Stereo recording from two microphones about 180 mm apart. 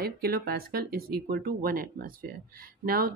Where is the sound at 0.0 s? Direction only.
60° right (ahead or behind).